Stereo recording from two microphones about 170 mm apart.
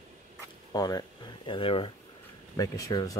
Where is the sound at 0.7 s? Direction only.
25° left (ahead or behind).